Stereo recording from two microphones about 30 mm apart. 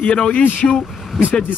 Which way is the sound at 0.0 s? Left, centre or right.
Left.